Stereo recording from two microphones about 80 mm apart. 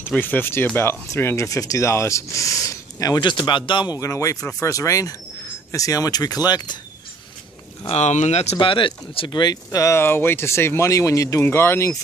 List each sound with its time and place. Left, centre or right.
0.2 s speech: left
3.2 s speech: left
4.0 s speech: left
8.5 s speech: left
9.9 s speech: left
11.4 s speech: left